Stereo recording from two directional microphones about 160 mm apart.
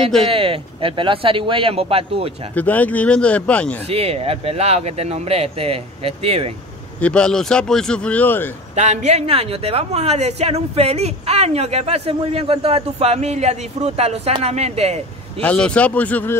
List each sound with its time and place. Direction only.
0.3 s speech: 35° right (ahead or behind)
2.5 s speech: 10° left (ahead or behind)
3.8 s speech: 40° right (ahead or behind)
7.0 s speech: 5° left (ahead or behind)
8.7 s speech: 45° right (ahead or behind)
15.4 s speech: 5° left (ahead or behind)